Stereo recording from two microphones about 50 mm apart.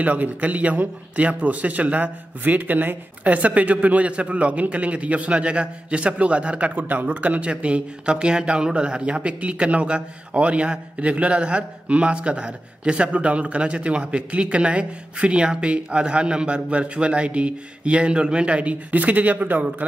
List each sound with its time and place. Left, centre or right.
0.0 s a man's voice: right